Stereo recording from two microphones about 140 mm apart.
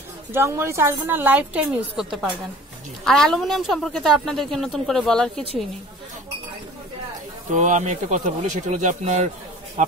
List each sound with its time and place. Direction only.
0.3 s a woman's voice: 15° right (ahead or behind); by 5.4 s 5° left (ahead or behind)
7.5 s speech: 60° right (ahead or behind)